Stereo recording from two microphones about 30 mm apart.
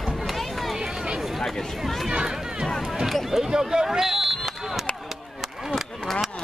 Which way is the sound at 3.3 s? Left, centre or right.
Centre.